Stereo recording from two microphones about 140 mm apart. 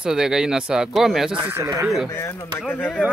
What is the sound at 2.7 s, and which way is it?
Speech, 10° left (ahead or behind).